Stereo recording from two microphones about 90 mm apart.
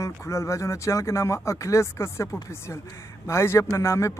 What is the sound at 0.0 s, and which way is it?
Speech, 30° left (ahead or behind).